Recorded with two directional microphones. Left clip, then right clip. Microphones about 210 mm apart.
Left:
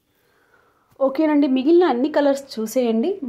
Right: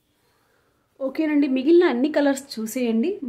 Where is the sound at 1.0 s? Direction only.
10° left (ahead or behind).